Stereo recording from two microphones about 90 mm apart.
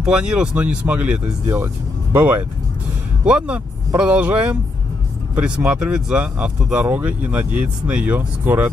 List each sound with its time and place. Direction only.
0.0 s speech: 10° right (ahead or behind)
1.4 s speech: 35° right (ahead or behind)
2.1 s speech: 20° right (ahead or behind)